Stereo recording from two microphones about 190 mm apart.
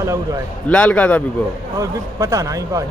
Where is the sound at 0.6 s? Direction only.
5° left (ahead or behind).